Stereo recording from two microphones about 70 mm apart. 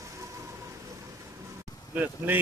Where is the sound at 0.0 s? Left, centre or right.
Right.